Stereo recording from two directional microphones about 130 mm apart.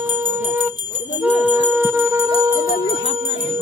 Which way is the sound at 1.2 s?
10° right (ahead or behind).